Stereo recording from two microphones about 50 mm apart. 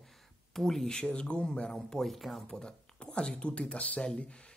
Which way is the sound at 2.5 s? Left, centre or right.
Centre.